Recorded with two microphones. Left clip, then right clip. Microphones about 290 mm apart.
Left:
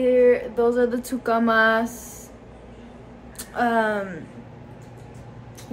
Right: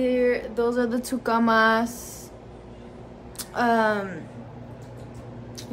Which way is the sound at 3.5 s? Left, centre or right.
Centre.